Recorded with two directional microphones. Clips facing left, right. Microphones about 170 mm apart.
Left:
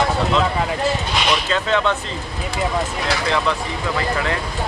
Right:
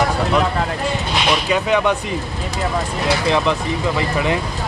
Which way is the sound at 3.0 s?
20° right (ahead or behind).